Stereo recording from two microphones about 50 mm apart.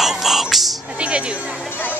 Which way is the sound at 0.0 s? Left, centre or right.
Centre.